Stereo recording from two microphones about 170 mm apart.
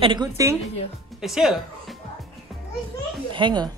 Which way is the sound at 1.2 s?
Centre (ahead or behind).